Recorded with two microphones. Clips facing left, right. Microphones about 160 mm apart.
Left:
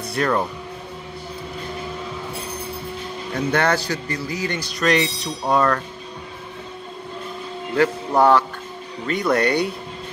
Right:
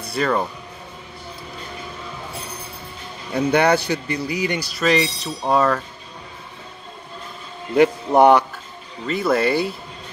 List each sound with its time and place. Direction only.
0.0 s speech: centre (ahead or behind)
3.3 s speech: 15° right (ahead or behind)
7.7 s speech: 15° right (ahead or behind)
9.0 s speech: centre (ahead or behind)